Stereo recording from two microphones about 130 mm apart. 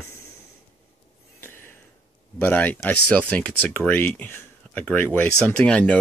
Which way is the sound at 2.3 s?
15° left (ahead or behind).